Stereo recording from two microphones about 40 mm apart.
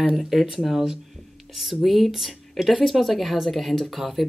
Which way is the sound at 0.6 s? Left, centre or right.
Centre.